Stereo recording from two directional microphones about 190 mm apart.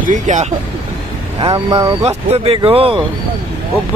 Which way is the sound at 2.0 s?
30° right (ahead or behind).